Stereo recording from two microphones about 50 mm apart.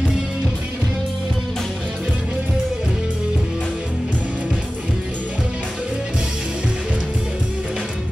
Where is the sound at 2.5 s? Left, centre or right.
Centre.